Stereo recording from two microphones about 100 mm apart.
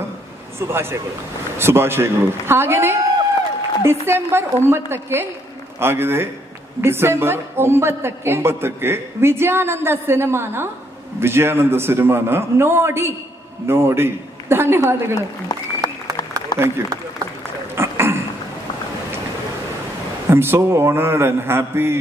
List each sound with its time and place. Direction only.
0.6 s a man's voice: 25° right (ahead or behind)
15.1 s speech: 40° left (ahead or behind)
16.5 s a man's voice: 25° right (ahead or behind)
17.7 s a sound: 25° right (ahead or behind)
20.2 s a man's voice: 25° right (ahead or behind)